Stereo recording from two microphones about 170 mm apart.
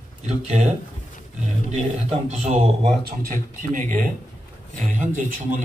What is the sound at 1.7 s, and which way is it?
A man's voice, 40° right (ahead or behind).